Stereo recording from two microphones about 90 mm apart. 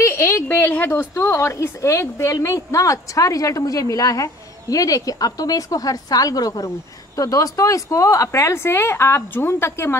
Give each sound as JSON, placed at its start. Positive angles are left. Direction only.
{"t": 0.0, "sound": "a woman's voice", "side_deg": 30}